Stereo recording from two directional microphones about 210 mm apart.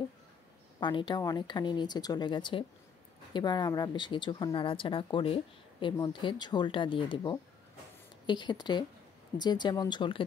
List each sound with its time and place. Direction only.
0.7 s speech: 20° left (ahead or behind)